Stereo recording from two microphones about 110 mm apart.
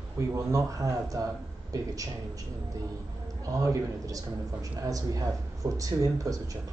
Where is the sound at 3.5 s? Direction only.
30° right (ahead or behind).